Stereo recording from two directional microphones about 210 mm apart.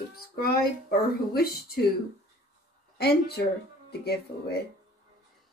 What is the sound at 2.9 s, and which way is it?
Speech, 50° left (ahead or behind).